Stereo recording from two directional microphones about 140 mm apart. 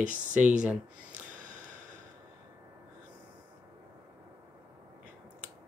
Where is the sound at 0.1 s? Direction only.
10° right (ahead or behind).